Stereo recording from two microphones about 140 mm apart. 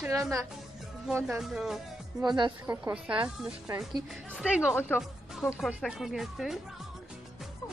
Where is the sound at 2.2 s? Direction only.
30° right (ahead or behind).